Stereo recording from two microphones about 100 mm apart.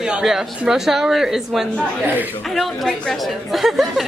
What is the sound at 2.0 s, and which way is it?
Speech, 20° right (ahead or behind).